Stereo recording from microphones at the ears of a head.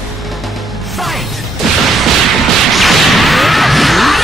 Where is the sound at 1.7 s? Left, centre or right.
Right.